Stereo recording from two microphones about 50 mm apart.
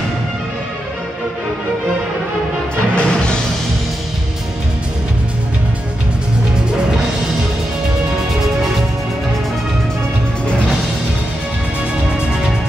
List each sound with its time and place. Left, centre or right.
3.0 s music: centre